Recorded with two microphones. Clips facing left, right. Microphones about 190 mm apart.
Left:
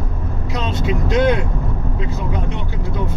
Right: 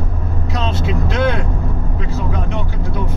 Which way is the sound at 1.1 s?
20° left (ahead or behind).